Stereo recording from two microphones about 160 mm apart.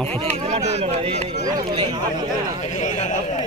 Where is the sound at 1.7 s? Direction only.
30° right (ahead or behind).